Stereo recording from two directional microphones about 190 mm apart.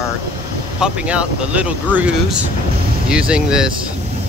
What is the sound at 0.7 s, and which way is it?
Speech, 5° right (ahead or behind).